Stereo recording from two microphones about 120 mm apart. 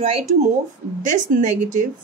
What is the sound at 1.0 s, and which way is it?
Speech, 90° right.